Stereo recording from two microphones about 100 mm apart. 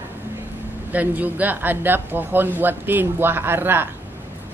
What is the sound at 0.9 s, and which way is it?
Speech, 15° right (ahead or behind).